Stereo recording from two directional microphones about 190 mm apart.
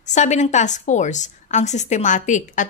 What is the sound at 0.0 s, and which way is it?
A woman's voice, 40° left (ahead or behind).